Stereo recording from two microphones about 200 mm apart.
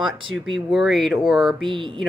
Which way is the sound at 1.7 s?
25° right (ahead or behind).